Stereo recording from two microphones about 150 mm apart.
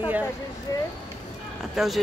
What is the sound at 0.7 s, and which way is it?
Speech, 25° left (ahead or behind).